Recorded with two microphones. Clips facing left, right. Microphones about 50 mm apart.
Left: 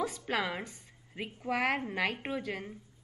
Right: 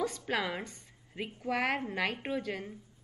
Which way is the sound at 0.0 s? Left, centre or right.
Centre.